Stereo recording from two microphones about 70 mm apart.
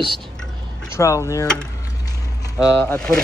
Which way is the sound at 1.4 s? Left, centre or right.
Centre.